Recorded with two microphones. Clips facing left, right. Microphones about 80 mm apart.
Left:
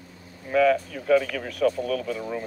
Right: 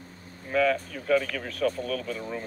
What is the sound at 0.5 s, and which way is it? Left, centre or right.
Speech, left.